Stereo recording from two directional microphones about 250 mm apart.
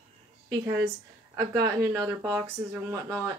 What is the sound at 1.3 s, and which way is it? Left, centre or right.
Speech, centre.